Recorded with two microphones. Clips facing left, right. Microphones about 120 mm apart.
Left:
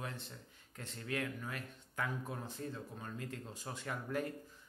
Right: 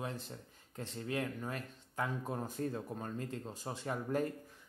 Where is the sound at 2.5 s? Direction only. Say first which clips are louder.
Right 6 dB; 50° right (ahead or behind); by 4.3 s 35° right (ahead or behind).